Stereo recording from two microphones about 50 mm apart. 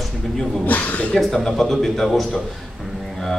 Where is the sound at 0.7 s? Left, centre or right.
Left.